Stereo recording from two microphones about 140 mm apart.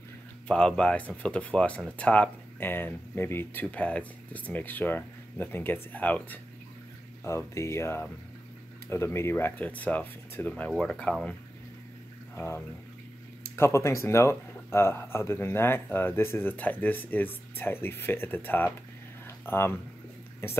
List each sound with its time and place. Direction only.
0.5 s speech: 5° left (ahead or behind)
13.6 s speech: 20° left (ahead or behind)
19.2 s a sound: 15° left (ahead or behind)
20.4 s speech: 15° left (ahead or behind)